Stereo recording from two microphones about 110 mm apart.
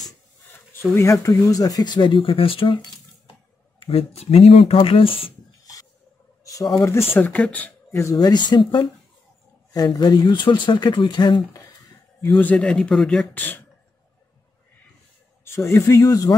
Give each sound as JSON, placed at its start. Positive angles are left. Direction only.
{"t": 0.7, "sound": "speech", "side_deg": 25}
{"t": 3.8, "sound": "speech", "side_deg": 65}
{"t": 4.8, "sound": "speech", "side_deg": 55}
{"t": 6.4, "sound": "a sound", "side_deg": 30}
{"t": 7.1, "sound": "speech", "side_deg": 15}
{"t": 7.9, "sound": "speech", "side_deg": 30}
{"t": 12.4, "sound": "speech", "side_deg": 10}
{"t": 13.3, "sound": "speech", "side_deg": 15}
{"t": 15.7, "sound": "speech", "side_deg": 30}